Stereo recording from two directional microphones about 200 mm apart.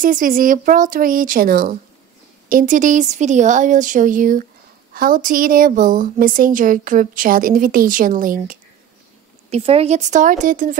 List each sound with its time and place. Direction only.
0.0 s a woman's voice: 45° right (ahead or behind)
9.5 s speech: 30° right (ahead or behind)